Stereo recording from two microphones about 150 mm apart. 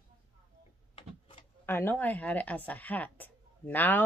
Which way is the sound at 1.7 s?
15° left (ahead or behind).